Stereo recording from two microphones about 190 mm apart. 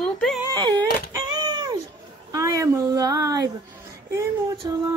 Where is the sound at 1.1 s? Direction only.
25° right (ahead or behind).